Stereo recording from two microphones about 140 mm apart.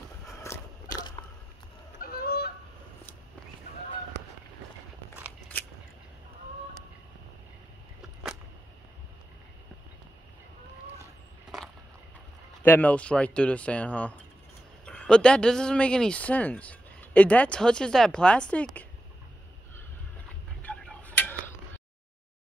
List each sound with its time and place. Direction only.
0.4 s a sound: 25° left (ahead or behind)
2.0 s honk: 90° left
12.6 s speech: 15° left (ahead or behind)
20.6 s tick-tock: 10° left (ahead or behind)